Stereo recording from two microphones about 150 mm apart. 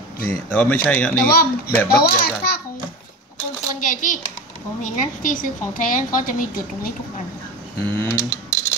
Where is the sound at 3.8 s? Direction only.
60° left (ahead or behind).